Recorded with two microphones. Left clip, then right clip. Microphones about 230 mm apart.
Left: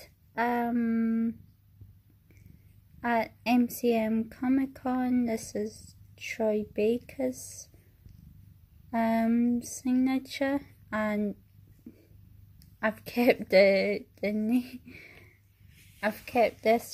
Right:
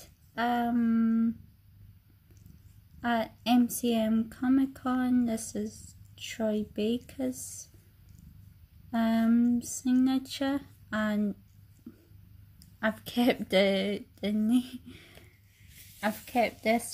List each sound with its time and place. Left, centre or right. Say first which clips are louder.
0.0 s a sound: left 1 dB; centre
3.0 s speech: left 2 dB; centre
7.3 s a woman's voice: right 1 dB; centre
8.9 s speech: left 1 dB; centre
12.7 s speech: left 1 dB; centre